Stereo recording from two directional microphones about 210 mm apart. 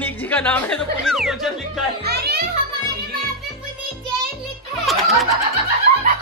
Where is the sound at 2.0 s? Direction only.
50° right (ahead or behind).